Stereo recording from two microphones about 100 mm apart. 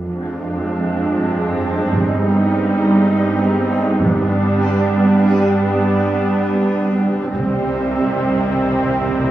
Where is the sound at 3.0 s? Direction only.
5° left (ahead or behind).